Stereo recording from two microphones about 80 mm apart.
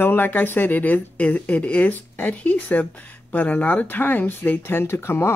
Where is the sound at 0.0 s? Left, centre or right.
Left.